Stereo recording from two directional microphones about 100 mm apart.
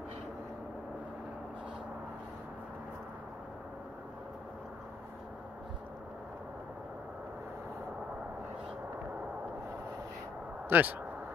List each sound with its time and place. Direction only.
10.7 s speech: 20° right (ahead or behind)